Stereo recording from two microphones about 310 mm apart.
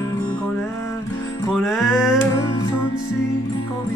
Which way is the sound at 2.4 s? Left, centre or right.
Centre.